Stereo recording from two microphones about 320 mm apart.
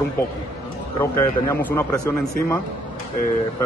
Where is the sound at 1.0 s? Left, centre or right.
Centre.